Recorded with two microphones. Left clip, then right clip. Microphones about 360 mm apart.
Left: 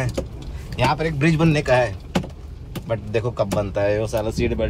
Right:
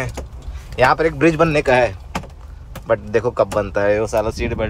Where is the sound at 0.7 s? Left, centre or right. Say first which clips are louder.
Right 7 dB; centre.